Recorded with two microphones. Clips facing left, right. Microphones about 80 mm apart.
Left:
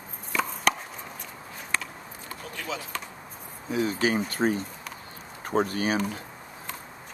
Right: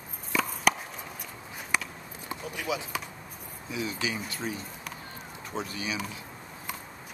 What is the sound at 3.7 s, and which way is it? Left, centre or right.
Speech, left.